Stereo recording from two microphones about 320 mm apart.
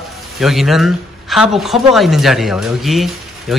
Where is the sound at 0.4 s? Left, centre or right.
Centre.